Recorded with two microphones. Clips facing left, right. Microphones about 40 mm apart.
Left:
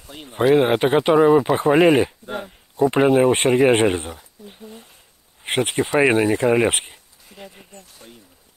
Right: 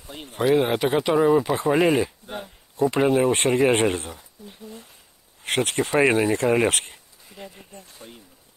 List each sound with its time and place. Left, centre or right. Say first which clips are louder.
0.3 s speech: left 4 dB; left
0.9 s speech: left 4 dB; left
6.9 s a sound: left 1 dB; centre
7.7 s speech: right 1 dB; centre